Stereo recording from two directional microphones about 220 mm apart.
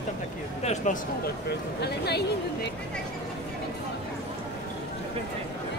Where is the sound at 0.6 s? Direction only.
30° left (ahead or behind).